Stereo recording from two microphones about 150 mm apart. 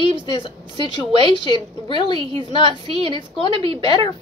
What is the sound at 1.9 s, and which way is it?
Speech, 30° left (ahead or behind).